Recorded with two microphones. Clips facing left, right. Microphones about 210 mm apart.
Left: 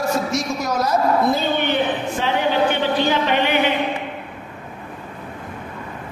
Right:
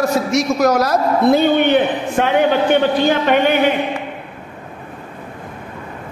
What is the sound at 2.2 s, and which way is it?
A man's voice, 60° right (ahead or behind).